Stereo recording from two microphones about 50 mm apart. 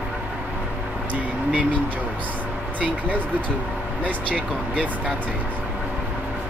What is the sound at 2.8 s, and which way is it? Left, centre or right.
Speech, left.